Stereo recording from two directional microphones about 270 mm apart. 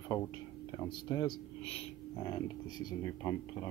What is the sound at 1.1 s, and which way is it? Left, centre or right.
Speech, centre.